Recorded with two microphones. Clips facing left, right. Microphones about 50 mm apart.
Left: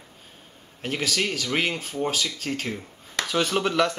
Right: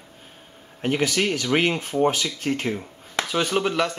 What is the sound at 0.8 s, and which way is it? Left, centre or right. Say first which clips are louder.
Speech: right 4 dB; centre.